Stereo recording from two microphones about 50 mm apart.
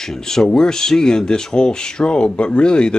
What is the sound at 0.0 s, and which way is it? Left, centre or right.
Speech, centre.